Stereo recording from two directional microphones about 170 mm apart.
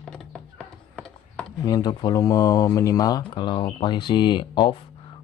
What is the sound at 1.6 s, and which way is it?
Speech, 25° left (ahead or behind).